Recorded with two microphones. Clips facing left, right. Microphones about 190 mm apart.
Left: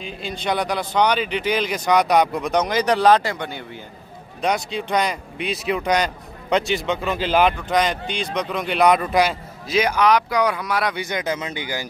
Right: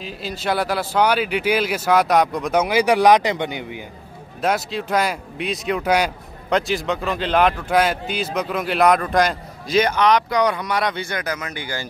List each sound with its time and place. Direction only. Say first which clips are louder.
0.0 s speech: right 1 dB; 5° right (ahead or behind)
4.4 s speech: right 1 dB; 5° right (ahead or behind)
11.1 s speech: left 2 dB; 20° left (ahead or behind)